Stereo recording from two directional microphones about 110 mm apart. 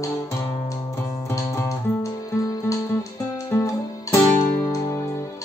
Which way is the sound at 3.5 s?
25° left (ahead or behind).